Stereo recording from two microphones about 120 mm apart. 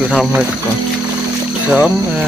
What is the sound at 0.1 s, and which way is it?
Speech, centre (ahead or behind).